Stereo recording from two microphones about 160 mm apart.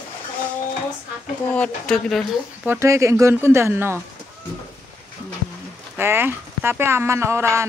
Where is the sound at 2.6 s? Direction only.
15° right (ahead or behind).